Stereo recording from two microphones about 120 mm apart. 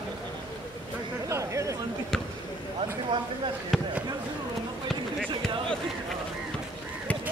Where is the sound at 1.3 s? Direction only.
25° right (ahead or behind).